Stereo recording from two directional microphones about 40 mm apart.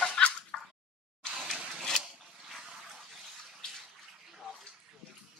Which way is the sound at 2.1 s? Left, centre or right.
Centre.